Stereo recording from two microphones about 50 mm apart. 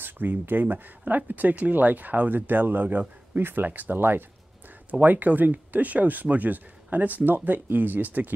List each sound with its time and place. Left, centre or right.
0.0 s speech: right